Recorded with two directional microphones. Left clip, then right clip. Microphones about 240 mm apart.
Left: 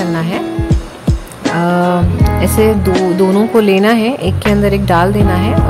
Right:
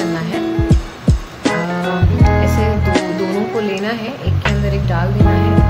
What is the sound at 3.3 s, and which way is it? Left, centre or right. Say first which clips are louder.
Speech: left 8 dB; left.